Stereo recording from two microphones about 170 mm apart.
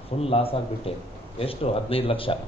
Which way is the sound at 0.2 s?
35° left (ahead or behind).